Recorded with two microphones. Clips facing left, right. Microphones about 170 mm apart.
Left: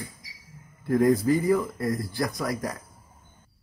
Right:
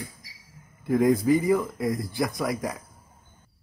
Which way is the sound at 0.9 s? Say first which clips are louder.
Even; 5° right (ahead or behind).